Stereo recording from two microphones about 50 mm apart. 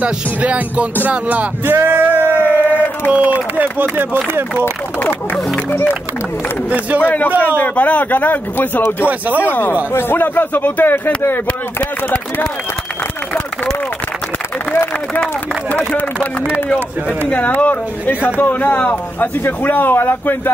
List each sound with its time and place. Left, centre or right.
0.0 s speech: right
1.7 s speech: right
2.2 s a sound: left
3.1 s speech: right
5.7 s speech: left
7.0 s speech: left
17.3 s speech: left